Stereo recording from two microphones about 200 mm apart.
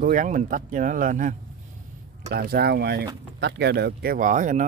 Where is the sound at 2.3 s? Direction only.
50° right (ahead or behind).